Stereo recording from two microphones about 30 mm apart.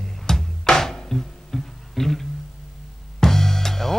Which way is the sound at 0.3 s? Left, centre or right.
Centre.